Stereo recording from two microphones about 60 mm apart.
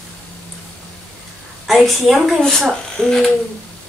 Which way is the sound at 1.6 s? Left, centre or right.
Centre.